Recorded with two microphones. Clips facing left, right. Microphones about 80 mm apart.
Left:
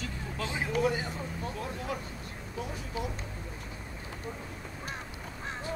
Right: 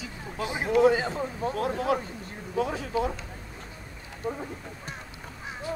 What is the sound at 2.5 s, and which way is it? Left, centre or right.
Speech, right.